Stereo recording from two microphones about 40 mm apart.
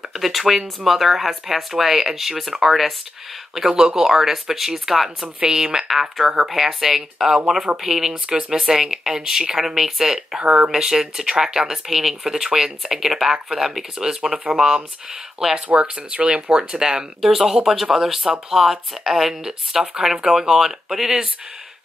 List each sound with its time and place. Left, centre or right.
0.1 s speech: centre
5.4 s speech: centre
5.9 s speech: centre
10.4 s speech: right
10.7 s speech: centre
15.7 s speech: right
17.2 s speech: centre